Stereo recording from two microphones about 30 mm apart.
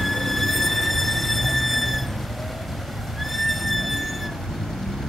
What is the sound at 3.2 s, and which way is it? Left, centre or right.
Neigh, centre.